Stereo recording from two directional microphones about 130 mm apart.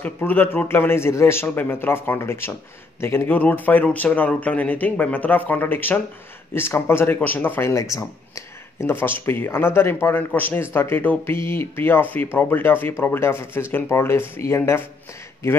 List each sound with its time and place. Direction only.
0.0 s speech: 15° left (ahead or behind)